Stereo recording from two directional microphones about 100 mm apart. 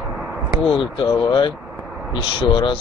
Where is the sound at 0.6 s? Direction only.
60° left (ahead or behind).